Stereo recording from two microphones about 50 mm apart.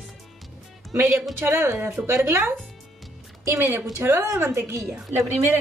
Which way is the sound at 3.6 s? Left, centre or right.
Right.